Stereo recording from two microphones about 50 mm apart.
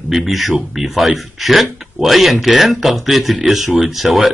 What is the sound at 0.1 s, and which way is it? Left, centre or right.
A man's voice, centre.